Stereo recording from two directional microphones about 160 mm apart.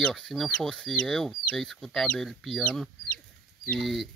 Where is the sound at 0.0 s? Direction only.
Centre (ahead or behind).